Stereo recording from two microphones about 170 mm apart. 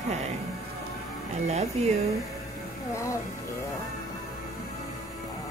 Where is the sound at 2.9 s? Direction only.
15° left (ahead or behind).